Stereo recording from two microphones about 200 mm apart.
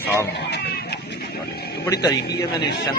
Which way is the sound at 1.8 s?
15° left (ahead or behind).